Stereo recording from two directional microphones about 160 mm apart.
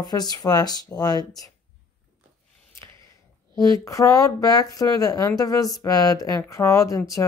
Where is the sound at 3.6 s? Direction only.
20° left (ahead or behind).